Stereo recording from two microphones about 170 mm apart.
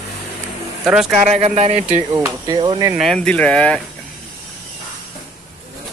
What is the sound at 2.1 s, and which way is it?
Speech, 20° right (ahead or behind).